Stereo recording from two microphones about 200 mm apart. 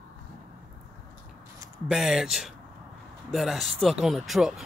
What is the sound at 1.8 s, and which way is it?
Speech, centre (ahead or behind).